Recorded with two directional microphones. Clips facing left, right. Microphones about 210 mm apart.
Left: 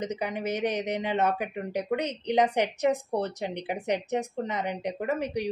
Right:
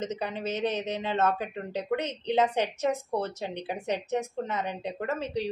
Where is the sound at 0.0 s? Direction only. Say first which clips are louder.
Left 1 dB; 15° left (ahead or behind).